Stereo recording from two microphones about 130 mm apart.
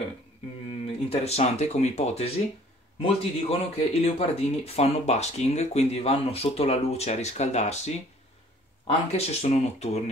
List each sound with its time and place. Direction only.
0.8 s speech: 55° left (ahead or behind)